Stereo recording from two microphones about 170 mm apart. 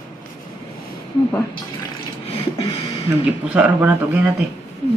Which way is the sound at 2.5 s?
25° left (ahead or behind).